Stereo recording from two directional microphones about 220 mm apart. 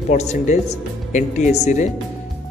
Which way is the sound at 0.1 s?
30° left (ahead or behind).